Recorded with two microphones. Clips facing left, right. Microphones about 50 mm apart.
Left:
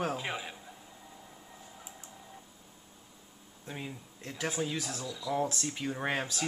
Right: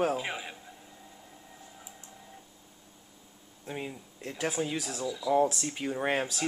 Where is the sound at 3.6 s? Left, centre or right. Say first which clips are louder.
Right 4 dB; centre.